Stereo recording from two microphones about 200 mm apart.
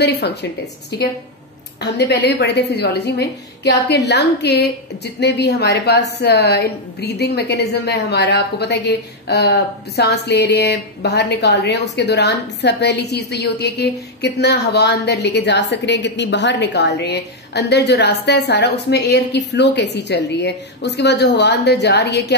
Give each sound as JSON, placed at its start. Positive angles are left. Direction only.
{"t": 0.0, "sound": "a woman's voice", "side_deg": 55}
{"t": 1.8, "sound": "a woman's voice", "side_deg": 55}